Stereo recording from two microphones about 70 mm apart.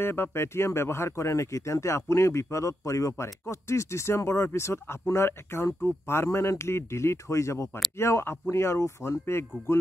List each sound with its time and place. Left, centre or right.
0.0 s speech: left